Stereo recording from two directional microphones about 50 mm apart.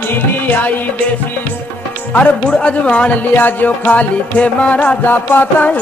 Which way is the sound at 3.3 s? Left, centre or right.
Left.